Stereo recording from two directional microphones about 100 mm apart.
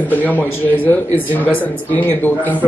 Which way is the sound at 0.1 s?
15° left (ahead or behind).